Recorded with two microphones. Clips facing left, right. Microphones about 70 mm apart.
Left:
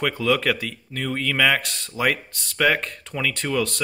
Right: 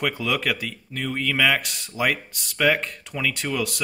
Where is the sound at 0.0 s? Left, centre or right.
Centre.